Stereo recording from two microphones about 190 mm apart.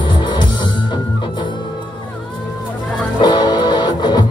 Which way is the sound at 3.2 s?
20° left (ahead or behind).